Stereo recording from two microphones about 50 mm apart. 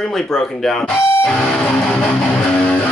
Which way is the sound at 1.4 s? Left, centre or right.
Centre.